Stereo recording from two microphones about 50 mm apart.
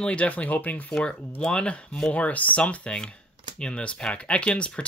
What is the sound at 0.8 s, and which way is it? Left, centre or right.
Speech, centre.